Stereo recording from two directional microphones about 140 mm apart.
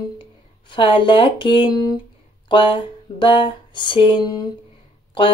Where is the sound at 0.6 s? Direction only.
35° left (ahead or behind).